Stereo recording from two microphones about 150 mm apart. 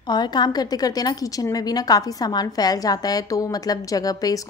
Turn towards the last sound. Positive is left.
turn(degrees=25)  # may be behind; listen again after turning